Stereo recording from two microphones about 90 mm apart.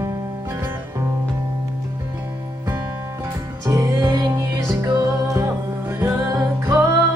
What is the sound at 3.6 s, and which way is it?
Music, 40° right (ahead or behind).